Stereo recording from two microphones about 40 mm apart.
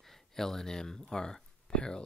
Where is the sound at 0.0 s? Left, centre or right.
Centre.